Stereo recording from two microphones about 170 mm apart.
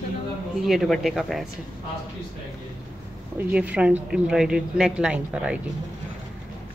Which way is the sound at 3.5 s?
10° right (ahead or behind).